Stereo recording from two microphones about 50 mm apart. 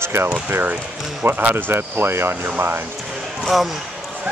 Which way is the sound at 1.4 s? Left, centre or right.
Right.